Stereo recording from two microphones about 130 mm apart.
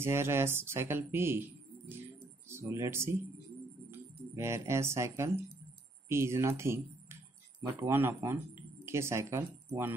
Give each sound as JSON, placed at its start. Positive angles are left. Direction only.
{"t": 0.0, "sound": "speech", "side_deg": -20}